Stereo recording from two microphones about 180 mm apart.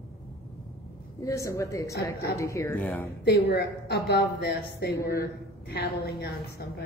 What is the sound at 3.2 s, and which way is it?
A woman's voice, 65° left (ahead or behind).